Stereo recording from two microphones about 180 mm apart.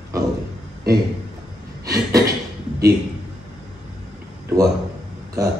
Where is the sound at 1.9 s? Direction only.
20° right (ahead or behind).